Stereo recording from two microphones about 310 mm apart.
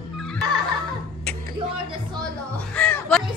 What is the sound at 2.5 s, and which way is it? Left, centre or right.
Crow, centre.